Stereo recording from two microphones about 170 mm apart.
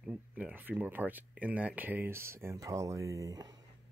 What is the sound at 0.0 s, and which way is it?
Speech, 5° right (ahead or behind).